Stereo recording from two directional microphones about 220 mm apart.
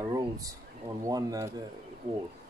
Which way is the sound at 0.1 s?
15° right (ahead or behind).